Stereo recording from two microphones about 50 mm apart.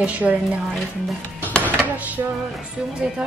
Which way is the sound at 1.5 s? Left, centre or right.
Left.